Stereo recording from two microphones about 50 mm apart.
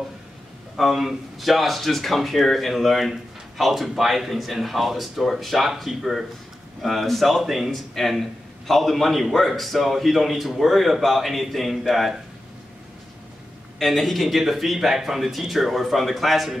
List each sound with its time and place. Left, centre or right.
0.7 s speech: centre
13.7 s speech: centre